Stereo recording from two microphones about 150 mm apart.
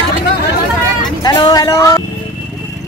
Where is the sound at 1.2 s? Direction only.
25° left (ahead or behind).